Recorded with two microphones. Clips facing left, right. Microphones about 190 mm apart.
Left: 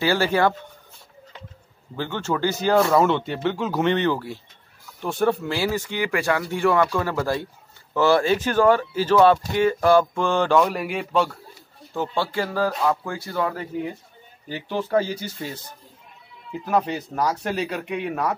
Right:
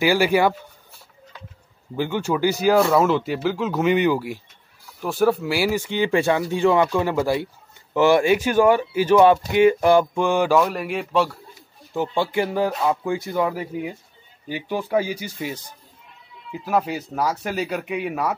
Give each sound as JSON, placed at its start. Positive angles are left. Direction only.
{"t": 0.0, "sound": "speech", "side_deg": -10}
{"t": 2.0, "sound": "speech", "side_deg": -10}
{"t": 3.9, "sound": "speech", "side_deg": -10}
{"t": 11.9, "sound": "speech", "side_deg": -15}